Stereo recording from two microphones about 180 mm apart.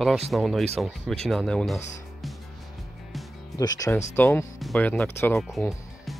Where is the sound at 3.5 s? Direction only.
20° left (ahead or behind).